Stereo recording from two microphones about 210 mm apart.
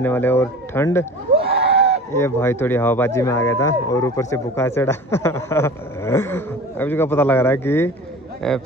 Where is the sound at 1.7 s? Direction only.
30° right (ahead or behind).